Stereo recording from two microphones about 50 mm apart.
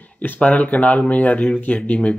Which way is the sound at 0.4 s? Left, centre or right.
Left.